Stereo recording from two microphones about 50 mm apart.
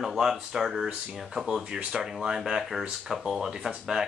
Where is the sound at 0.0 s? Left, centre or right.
Centre.